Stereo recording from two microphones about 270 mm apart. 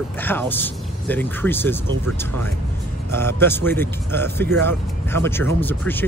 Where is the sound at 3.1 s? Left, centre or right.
Centre.